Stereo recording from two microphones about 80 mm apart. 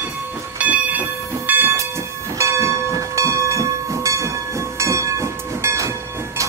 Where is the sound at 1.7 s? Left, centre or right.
Right.